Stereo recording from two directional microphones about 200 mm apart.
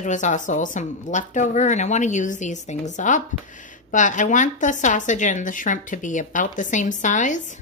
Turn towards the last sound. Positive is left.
turn(degrees=40)  # may be behind; listen again after turning